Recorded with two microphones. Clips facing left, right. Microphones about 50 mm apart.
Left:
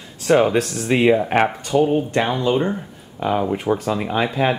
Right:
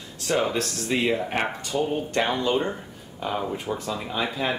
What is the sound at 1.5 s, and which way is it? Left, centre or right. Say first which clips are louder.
Speech: left 8 dB; centre.